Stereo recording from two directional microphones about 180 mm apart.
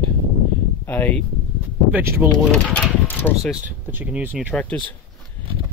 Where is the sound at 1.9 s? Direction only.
10° right (ahead or behind).